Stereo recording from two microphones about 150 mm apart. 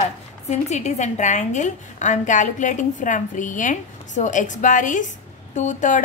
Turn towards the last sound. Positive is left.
turn(degrees=55)  # may be behind; listen again after turning